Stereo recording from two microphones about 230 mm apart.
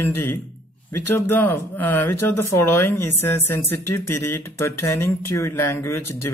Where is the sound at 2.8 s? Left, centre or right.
Centre.